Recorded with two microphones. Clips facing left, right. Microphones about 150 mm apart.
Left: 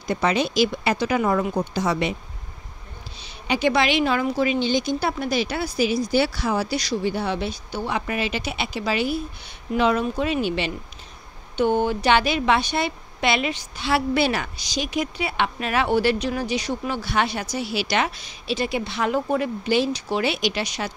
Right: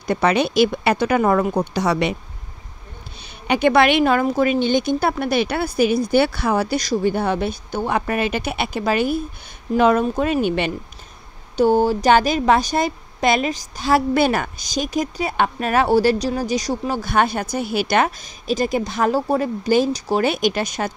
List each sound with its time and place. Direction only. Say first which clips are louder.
0.0 s speech: right 4 dB; 60° right (ahead or behind)
3.2 s speech: right 4 dB; 55° right (ahead or behind)
11.5 s speech: right 5 dB; 40° right (ahead or behind)